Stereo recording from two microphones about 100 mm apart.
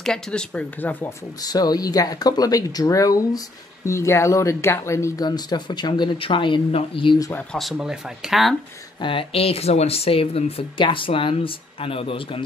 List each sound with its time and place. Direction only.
0.0 s speech: 5° left (ahead or behind)
1.4 s speech: 40° left (ahead or behind)
5.2 s speech: 45° left (ahead or behind); by 7.2 s 65° left (ahead or behind)
7.5 s speech: centre (ahead or behind)
9.0 s speech: 65° left (ahead or behind)